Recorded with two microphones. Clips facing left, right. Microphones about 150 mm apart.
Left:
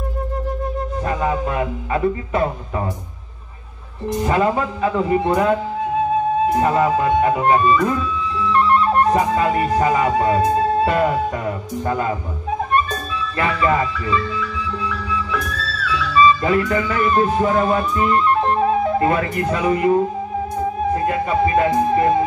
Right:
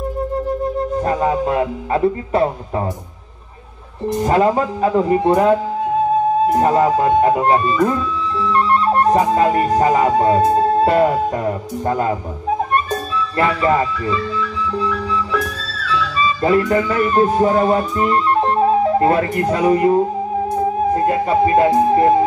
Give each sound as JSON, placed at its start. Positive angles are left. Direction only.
{"t": 1.0, "sound": "music", "side_deg": -35}
{"t": 4.2, "sound": "speech", "side_deg": -35}
{"t": 12.7, "sound": "music", "side_deg": -35}
{"t": 20.9, "sound": "speech", "side_deg": -35}